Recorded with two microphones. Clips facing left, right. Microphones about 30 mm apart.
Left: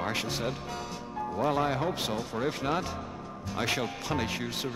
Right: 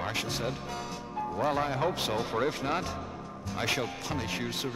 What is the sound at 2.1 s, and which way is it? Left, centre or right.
Speech, right.